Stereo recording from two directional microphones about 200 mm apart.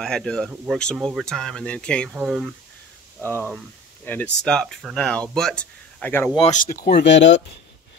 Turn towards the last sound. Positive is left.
turn(degrees=65)  # may be behind; listen again after turning